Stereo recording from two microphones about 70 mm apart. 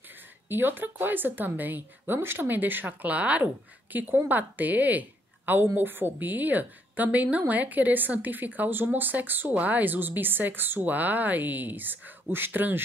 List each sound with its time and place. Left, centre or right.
0.5 s a woman's voice: right